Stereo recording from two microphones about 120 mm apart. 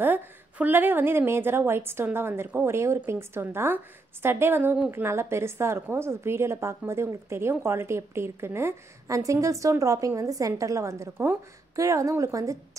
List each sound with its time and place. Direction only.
0.0 s a woman's voice: 15° right (ahead or behind)